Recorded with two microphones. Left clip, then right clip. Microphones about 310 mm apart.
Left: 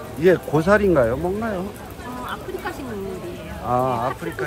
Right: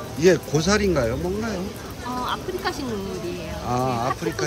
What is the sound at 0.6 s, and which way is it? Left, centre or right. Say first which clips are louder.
Speech: left 5 dB; centre.